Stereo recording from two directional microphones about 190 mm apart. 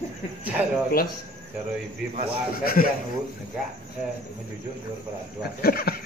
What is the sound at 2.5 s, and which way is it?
Speech, 50° left (ahead or behind).